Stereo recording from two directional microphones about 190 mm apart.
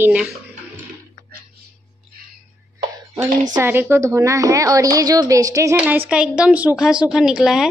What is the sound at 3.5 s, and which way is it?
A woman's voice, 10° right (ahead or behind).